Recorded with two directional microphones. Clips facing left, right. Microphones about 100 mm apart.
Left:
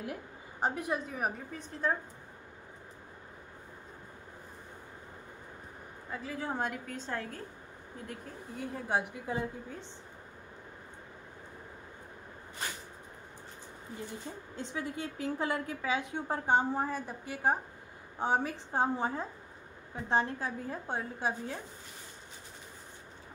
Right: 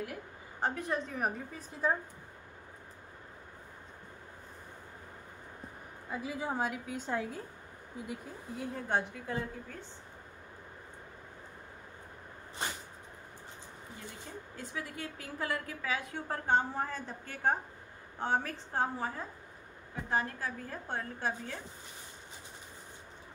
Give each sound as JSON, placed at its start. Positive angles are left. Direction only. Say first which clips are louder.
{"t": 0.6, "sound": "a woman's voice", "louder": "left 1 dB", "side_deg": 15}
{"t": 1.8, "sound": "a woman's voice", "louder": "right 1 dB", "side_deg": -10}
{"t": 6.0, "sound": "a woman's voice", "louder": "right 1 dB", "side_deg": -10}
{"t": 8.1, "sound": "a woman's voice", "louder": "right 1 dB", "side_deg": 0}
{"t": 14.5, "sound": "a woman's voice", "louder": "left 5 dB", "side_deg": 25}